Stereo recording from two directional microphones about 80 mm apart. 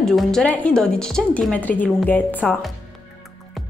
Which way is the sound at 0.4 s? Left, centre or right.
Centre.